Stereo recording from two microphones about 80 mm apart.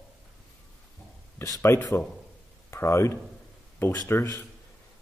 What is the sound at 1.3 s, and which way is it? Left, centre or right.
A man's voice, left.